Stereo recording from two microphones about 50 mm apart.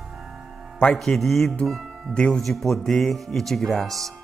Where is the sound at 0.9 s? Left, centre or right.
Centre.